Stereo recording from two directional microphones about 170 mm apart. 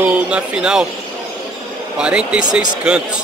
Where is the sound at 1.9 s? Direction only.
5° right (ahead or behind).